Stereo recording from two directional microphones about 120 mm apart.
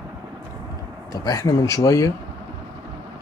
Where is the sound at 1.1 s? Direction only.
30° left (ahead or behind).